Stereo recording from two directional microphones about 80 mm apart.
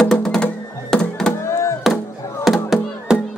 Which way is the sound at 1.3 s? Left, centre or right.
Left.